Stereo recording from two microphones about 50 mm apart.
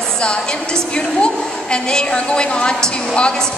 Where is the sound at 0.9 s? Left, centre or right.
Centre.